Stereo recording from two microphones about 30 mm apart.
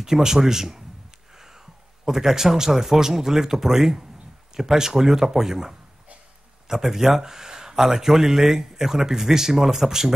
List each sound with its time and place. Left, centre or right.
0.0 s speech: centre
1.3 s a sound: centre
2.0 s speech: centre